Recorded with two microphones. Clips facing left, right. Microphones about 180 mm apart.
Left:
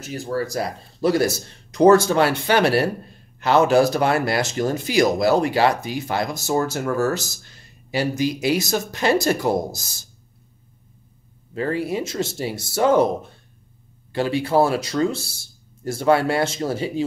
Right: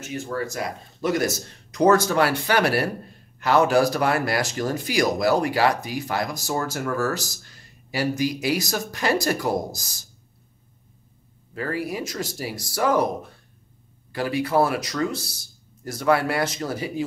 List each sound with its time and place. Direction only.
0.0 s speech: 35° left (ahead or behind)
11.5 s speech: 25° left (ahead or behind)